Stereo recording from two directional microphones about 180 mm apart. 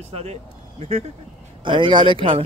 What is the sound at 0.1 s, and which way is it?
Speech, 40° right (ahead or behind).